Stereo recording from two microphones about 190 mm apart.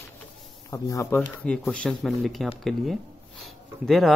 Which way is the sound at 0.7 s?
15° left (ahead or behind).